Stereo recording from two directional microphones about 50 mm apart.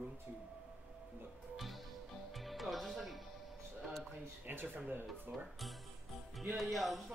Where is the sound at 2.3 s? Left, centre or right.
Centre.